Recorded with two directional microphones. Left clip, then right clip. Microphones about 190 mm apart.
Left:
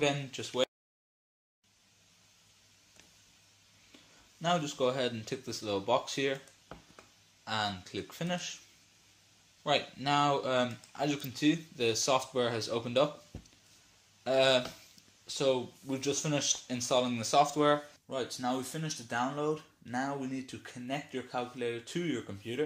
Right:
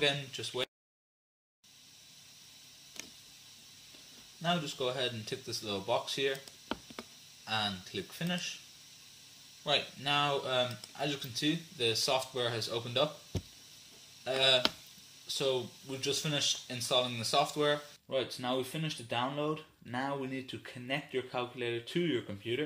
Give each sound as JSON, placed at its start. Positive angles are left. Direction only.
{"t": 0.0, "sound": "speech", "side_deg": 40}
{"t": 4.4, "sound": "speech", "side_deg": 45}
{"t": 7.4, "sound": "speech", "side_deg": 45}
{"t": 9.6, "sound": "speech", "side_deg": 40}
{"t": 14.2, "sound": "speech", "side_deg": 40}